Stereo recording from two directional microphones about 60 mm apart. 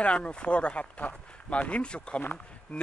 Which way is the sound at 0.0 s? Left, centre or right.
Centre.